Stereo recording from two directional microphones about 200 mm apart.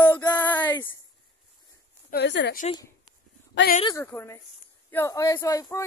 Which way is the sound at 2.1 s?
60° left (ahead or behind).